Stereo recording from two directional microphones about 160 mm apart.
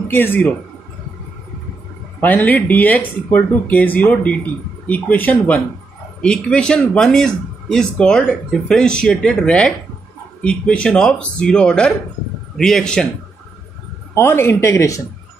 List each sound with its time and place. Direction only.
0.1 s speech: 15° left (ahead or behind)
2.1 s speech: 10° left (ahead or behind)
14.1 s speech: 15° left (ahead or behind)